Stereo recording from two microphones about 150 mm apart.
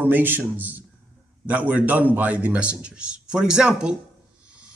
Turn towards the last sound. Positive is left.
turn(degrees=-5)  # may be behind; listen again after turning